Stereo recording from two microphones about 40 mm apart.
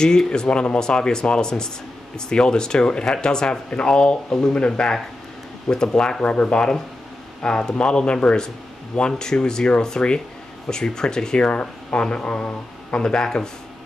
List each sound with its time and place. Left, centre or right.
0.0 s speech: centre
13.0 s speech: centre